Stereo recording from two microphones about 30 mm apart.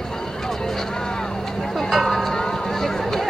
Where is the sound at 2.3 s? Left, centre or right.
Centre.